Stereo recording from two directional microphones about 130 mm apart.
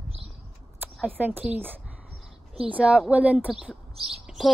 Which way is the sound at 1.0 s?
15° right (ahead or behind).